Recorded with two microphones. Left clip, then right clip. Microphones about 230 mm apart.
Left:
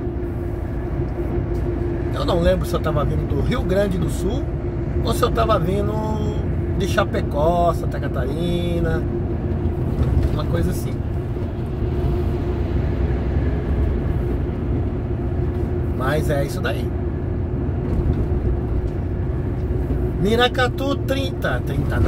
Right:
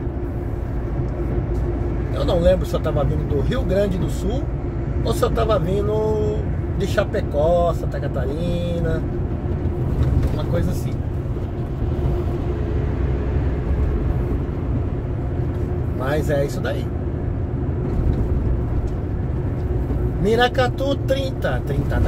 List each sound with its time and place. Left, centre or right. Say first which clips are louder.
2.1 s speech: right 2 dB; left
5.0 s speech: left 1 dB; centre
16.1 s speech: right 1 dB; centre
20.2 s speech: right 1 dB; left